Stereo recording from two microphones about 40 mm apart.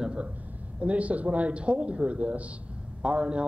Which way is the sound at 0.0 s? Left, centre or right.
Right.